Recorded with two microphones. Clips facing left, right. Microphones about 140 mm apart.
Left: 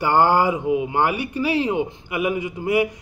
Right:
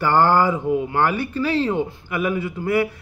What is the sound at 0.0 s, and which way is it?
Speech, 15° left (ahead or behind).